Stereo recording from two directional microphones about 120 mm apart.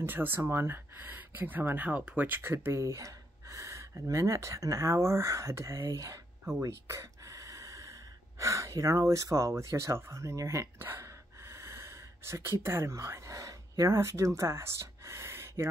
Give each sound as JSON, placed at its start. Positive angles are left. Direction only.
{"t": 0.0, "sound": "speech", "side_deg": -15}
{"t": 6.5, "sound": "gasp", "side_deg": -25}
{"t": 12.6, "sound": "speech", "side_deg": -20}